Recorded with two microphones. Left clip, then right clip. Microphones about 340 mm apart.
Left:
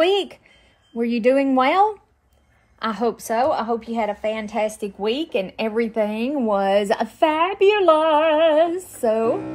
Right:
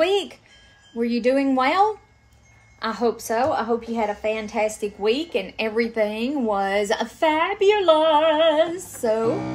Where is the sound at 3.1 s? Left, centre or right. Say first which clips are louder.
Left 1 dB; left.